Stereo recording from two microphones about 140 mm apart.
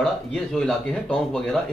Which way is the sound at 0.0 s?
Centre (ahead or behind).